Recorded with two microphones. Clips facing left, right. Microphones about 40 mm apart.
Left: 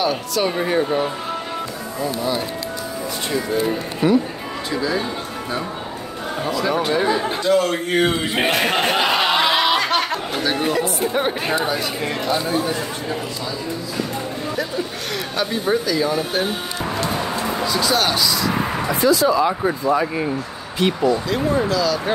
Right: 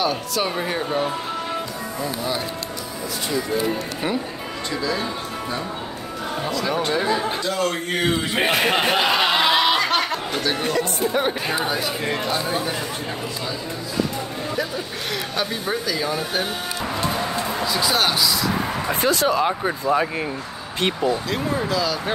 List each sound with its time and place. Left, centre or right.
0.0 s speech: centre
4.7 s speech: centre
6.4 s speech: centre
15.3 s speech: centre
17.6 s speech: centre
18.9 s speech: right
21.3 s speech: centre
21.6 s speech: centre